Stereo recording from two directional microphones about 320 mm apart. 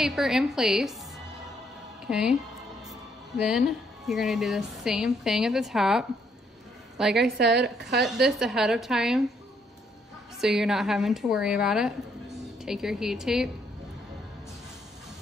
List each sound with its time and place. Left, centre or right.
0.0 s a woman's voice: centre
2.0 s speech: centre
7.3 s a woman's voice: right
8.0 s a woman's voice: centre
10.4 s a woman's voice: centre